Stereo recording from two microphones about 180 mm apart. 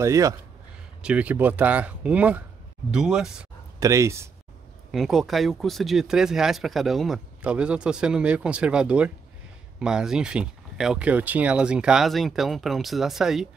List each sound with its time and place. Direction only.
0.0 s speech: 15° right (ahead or behind)
1.0 s speech: 5° right (ahead or behind)
3.8 s speech: 15° right (ahead or behind)
4.9 s speech: centre (ahead or behind)